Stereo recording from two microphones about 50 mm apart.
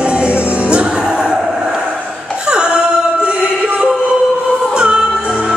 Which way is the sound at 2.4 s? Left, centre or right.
Centre.